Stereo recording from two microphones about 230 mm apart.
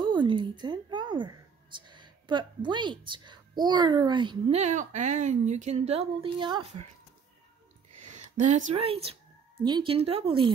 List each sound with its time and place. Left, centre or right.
0.0 s a woman's voice: centre
8.1 s speech: right